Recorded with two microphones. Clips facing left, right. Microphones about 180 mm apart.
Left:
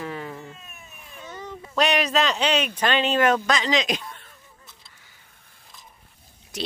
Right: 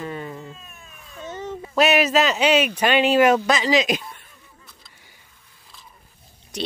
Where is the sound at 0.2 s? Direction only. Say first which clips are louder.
Right 2 dB; 15° right (ahead or behind).